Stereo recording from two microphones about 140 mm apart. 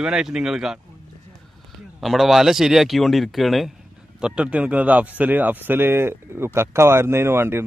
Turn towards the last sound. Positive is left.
turn(degrees=-15)  # may be behind; listen again after turning